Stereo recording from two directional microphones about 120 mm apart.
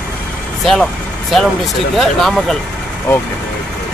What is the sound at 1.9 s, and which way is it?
Speech, centre (ahead or behind).